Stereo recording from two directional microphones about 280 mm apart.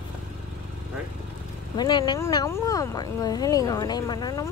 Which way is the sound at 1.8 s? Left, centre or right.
Centre.